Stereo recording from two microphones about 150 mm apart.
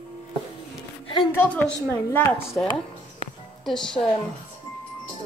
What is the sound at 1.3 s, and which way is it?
A woman's voice, 10° left (ahead or behind).